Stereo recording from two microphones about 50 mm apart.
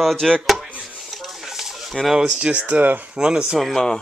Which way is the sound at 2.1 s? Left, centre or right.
Centre.